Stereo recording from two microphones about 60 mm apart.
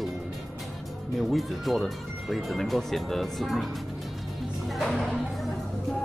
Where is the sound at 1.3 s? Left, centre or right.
Centre.